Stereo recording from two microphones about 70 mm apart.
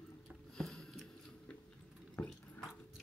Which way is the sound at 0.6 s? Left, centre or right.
Centre.